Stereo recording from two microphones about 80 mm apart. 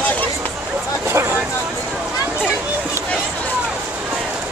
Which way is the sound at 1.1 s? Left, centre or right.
Right.